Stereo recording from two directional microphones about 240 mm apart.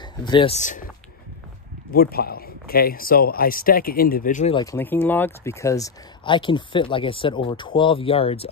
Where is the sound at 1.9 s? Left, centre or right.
Left.